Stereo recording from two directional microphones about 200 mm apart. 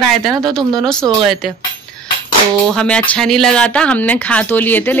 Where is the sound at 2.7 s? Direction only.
5° left (ahead or behind).